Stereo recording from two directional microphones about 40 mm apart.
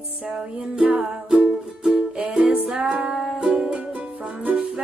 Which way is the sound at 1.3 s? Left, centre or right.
Centre.